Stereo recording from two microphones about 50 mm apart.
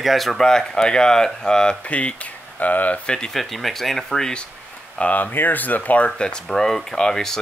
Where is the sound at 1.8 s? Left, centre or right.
Left.